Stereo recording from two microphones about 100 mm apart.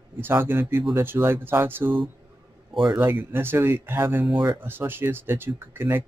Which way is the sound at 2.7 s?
50° right (ahead or behind).